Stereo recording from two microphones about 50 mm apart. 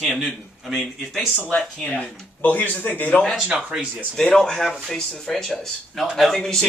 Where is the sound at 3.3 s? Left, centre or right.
Centre.